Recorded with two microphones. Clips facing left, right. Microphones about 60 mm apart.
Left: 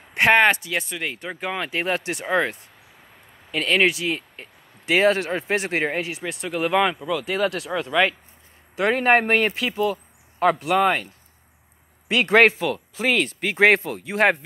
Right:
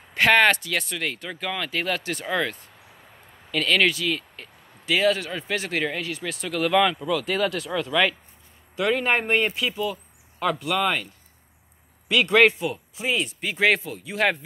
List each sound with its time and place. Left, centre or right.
0.1 s speech: left
0.7 s speech: centre
1.1 s speech: left
3.5 s speech: left
6.1 s speech: centre
7.3 s speech: left
8.7 s speech: left
9.5 s speech: left
12.1 s speech: left
12.7 s speech: left
13.4 s speech: left